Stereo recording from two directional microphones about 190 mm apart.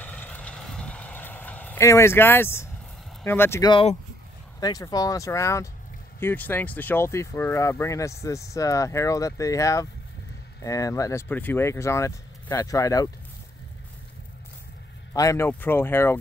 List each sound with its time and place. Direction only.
0.0 s vehicle: 10° left (ahead or behind)
3.3 s speech: 10° left (ahead or behind)
15.1 s speech: 15° left (ahead or behind)